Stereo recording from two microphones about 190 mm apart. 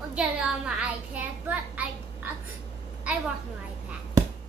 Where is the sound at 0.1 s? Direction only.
5° right (ahead or behind).